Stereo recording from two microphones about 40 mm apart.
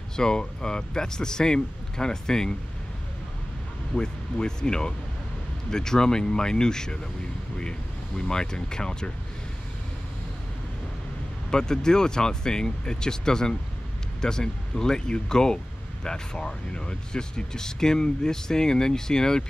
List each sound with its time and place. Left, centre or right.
0.1 s speech: centre
3.9 s speech: centre
8.3 s speech: centre
11.5 s speech: centre